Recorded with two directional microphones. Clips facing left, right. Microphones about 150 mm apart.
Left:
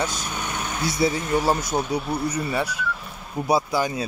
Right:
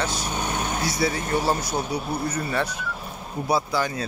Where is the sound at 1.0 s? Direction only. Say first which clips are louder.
Left 4 dB; 20° left (ahead or behind).